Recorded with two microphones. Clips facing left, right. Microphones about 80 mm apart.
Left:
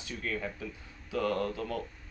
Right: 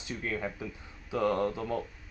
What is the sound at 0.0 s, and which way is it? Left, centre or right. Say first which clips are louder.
Speech: right 2 dB; right.